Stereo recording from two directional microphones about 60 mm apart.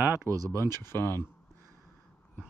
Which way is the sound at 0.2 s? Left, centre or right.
Right.